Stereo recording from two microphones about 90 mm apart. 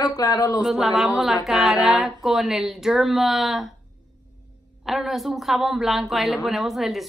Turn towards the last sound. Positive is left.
turn(degrees=0)  # may be behind; listen again after turning